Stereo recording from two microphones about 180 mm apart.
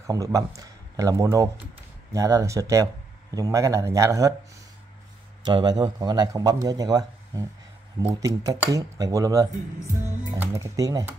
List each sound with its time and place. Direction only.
0.0 s a man's voice: 20° right (ahead or behind)
5.4 s a man's voice: 25° right (ahead or behind)